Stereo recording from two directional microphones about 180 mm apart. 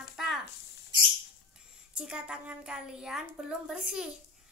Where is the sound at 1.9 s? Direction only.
5° right (ahead or behind).